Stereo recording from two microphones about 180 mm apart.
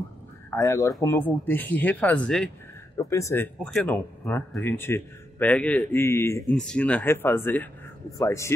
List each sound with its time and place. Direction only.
0.5 s a man's voice: 15° left (ahead or behind)
3.0 s a man's voice: 15° left (ahead or behind)
6.5 s a man's voice: 5° left (ahead or behind)